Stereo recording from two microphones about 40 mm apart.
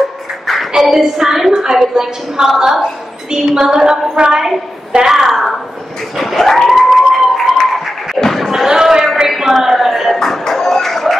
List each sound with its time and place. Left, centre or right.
0.7 s a woman's voice: centre
6.1 s a sound: centre
8.2 s slam: centre
8.5 s slam: centre
9.3 s a sound: centre
10.1 s music: centre